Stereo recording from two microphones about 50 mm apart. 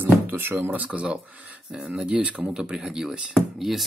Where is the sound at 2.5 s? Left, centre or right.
Centre.